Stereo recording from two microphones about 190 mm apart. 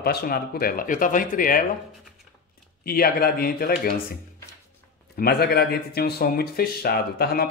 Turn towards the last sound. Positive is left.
turn(degrees=55)  # may be behind; listen again after turning